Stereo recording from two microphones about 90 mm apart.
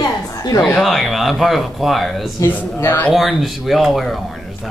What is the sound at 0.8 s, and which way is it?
Speech, centre (ahead or behind).